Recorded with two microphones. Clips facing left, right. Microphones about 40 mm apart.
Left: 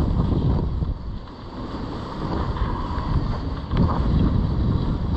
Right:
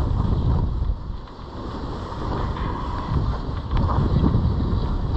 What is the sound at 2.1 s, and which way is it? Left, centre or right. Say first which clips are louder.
Vehicle: left 1 dB; right.